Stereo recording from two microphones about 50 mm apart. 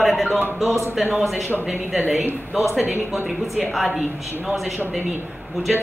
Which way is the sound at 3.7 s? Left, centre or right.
Centre.